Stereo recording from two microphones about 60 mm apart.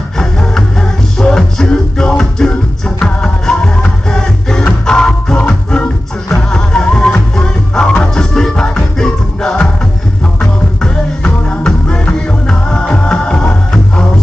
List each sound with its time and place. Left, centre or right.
0.2 s music: centre